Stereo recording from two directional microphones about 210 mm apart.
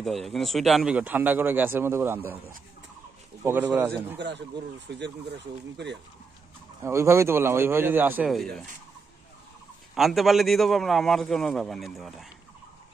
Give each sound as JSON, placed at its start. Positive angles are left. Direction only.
{"t": 0.0, "sound": "speech", "side_deg": 0}
{"t": 3.4, "sound": "speech", "side_deg": -10}
{"t": 4.2, "sound": "speech", "side_deg": -55}
{"t": 6.8, "sound": "speech", "side_deg": -15}
{"t": 9.9, "sound": "a man's voice", "side_deg": 0}